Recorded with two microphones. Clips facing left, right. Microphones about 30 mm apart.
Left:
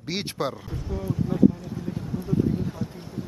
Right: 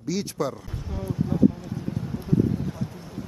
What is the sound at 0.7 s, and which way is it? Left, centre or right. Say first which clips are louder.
Speech: left 2 dB; centre.